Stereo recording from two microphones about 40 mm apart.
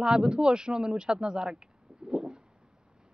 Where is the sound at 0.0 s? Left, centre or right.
Right.